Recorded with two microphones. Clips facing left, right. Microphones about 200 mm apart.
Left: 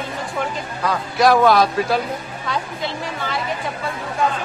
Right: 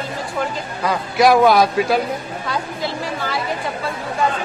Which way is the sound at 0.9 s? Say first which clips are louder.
Right 2 dB; 10° right (ahead or behind).